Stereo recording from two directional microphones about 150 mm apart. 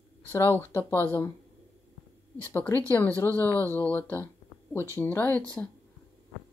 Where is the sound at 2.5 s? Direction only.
10° left (ahead or behind).